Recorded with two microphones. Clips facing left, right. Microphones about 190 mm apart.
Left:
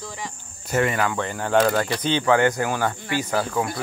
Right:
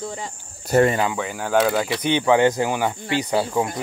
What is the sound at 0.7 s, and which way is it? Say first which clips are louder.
Speech: right 5 dB; 35° right (ahead or behind).